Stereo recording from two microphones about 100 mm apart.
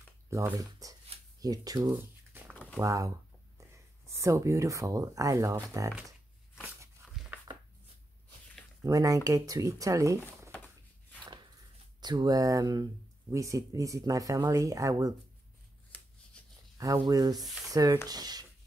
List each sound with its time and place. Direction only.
0.3 s speech: 35° right (ahead or behind)
2.5 s a sound: 15° left (ahead or behind)
2.8 s speech: 35° right (ahead or behind)
4.1 s speech: 30° right (ahead or behind)
8.8 s speech: 35° right (ahead or behind)
12.0 s speech: 45° right (ahead or behind)
15.9 s shuffling cards: 15° left (ahead or behind)
16.4 s writing: 10° left (ahead or behind)
16.7 s a sound: 35° right (ahead or behind)
17.1 s speech: 40° right (ahead or behind)